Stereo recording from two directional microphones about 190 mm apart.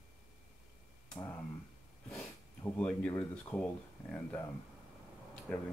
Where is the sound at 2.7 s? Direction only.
5° left (ahead or behind).